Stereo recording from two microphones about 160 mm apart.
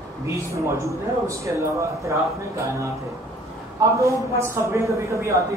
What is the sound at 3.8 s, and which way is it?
A man's voice, 20° right (ahead or behind).